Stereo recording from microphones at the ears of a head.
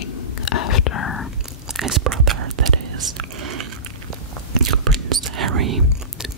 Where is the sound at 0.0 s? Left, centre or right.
Left.